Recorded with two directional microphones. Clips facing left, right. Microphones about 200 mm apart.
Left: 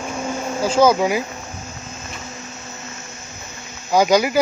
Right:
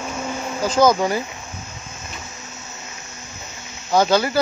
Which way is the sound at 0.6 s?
10° left (ahead or behind).